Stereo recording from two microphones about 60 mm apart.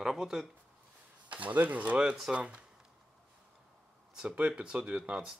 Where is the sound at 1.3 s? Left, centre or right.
Right.